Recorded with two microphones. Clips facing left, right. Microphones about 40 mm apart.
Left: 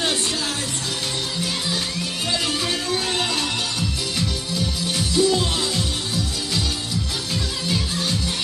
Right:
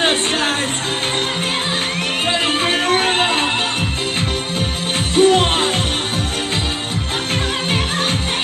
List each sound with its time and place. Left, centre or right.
2.4 s music: right
5.1 s music: right